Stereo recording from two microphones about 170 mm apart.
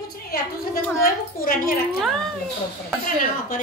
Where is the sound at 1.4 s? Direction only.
60° left (ahead or behind).